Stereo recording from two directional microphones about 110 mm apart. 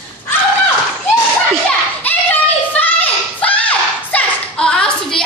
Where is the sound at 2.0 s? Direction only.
15° left (ahead or behind).